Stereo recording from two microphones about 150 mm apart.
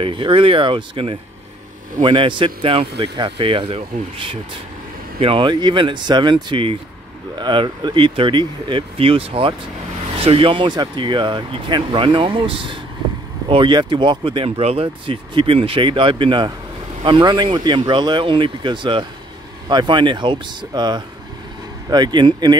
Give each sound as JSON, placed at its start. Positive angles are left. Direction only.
{"t": 0.0, "sound": "speech", "side_deg": -35}